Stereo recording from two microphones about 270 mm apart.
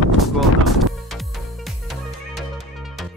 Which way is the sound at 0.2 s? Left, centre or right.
Centre.